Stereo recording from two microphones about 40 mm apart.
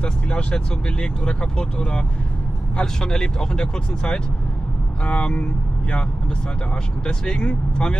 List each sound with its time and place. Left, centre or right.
0.0 s speech: left
7.1 s speech: left